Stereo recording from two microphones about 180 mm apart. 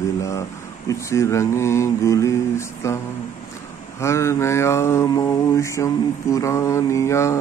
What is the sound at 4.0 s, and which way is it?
Mantra, 15° left (ahead or behind).